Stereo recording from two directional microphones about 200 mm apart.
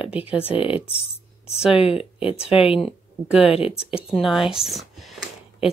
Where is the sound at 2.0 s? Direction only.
30° left (ahead or behind).